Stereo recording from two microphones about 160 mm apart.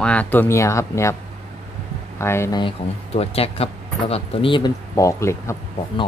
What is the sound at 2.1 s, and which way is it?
Speech, 15° left (ahead or behind).